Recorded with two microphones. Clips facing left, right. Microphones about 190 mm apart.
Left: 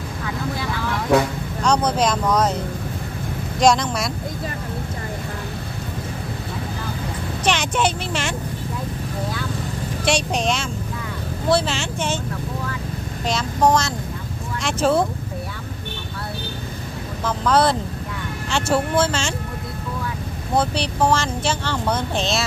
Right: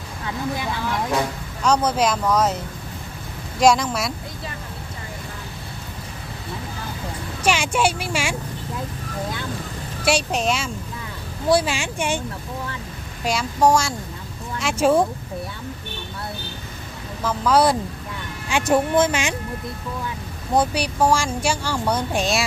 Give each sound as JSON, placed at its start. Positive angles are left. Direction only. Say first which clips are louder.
{"t": 1.6, "sound": "speech", "louder": "even", "side_deg": -5}
{"t": 7.4, "sound": "speech", "louder": "right 1 dB", "side_deg": -10}
{"t": 10.0, "sound": "speech", "louder": "even", "side_deg": -5}
{"t": 13.2, "sound": "speech", "louder": "even", "side_deg": -10}
{"t": 17.2, "sound": "speech", "louder": "even", "side_deg": -5}
{"t": 20.5, "sound": "speech", "louder": "right 1 dB", "side_deg": -10}